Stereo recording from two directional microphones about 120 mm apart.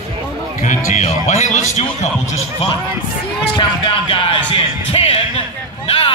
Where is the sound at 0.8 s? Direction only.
85° left.